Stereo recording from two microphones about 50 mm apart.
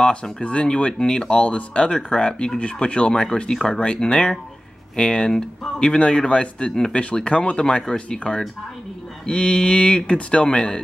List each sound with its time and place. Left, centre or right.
0.0 s speech: centre